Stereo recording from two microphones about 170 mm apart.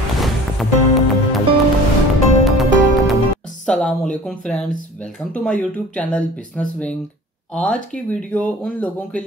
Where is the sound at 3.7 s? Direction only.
5° left (ahead or behind).